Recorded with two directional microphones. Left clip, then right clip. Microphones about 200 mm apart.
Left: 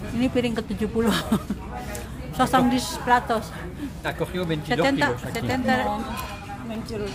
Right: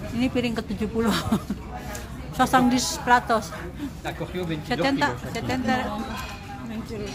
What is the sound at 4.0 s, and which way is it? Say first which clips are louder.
Speech: left 4 dB; 55° left (ahead or behind).